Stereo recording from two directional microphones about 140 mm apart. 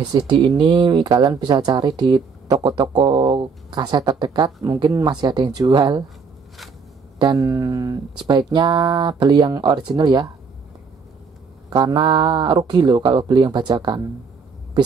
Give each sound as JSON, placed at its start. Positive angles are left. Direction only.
{"t": 0.5, "sound": "speech", "side_deg": -35}
{"t": 7.2, "sound": "speech", "side_deg": -25}
{"t": 11.7, "sound": "speech", "side_deg": -30}